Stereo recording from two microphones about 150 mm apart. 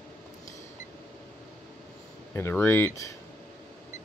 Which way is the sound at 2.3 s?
15° left (ahead or behind).